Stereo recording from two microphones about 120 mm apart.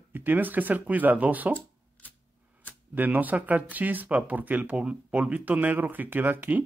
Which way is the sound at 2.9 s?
15° right (ahead or behind).